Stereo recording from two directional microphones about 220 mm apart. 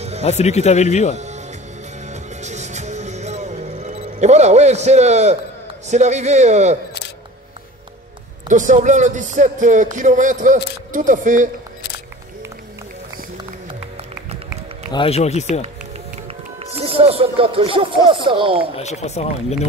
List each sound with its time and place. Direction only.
0.2 s speech: 30° left (ahead or behind)
1.1 s music: 30° right (ahead or behind)
5.9 s speech: 30° right (ahead or behind)
8.5 s speech: 35° right (ahead or behind)
14.9 s speech: 25° left (ahead or behind)
16.7 s speech: 25° right (ahead or behind)
18.8 s speech: 30° left (ahead or behind)